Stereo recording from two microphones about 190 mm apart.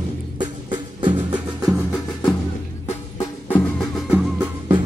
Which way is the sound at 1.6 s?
5° right (ahead or behind).